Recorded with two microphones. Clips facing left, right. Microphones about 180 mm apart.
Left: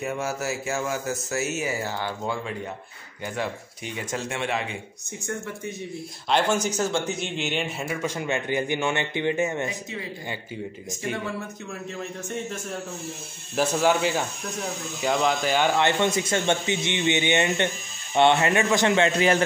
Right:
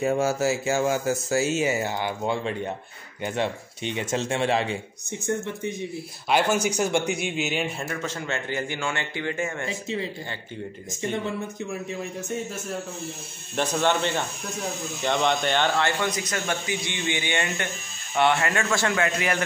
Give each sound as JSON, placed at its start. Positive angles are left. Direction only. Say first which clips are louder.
{"t": 0.0, "sound": "speech", "louder": "right 6 dB", "side_deg": -30}
{"t": 6.2, "sound": "speech", "louder": "right 1 dB", "side_deg": -10}
{"t": 7.8, "sound": "speech", "louder": "left 2 dB", "side_deg": 10}
{"t": 13.6, "sound": "speech", "louder": "left 2 dB", "side_deg": 5}
{"t": 15.8, "sound": "speech", "louder": "left 3 dB", "side_deg": 25}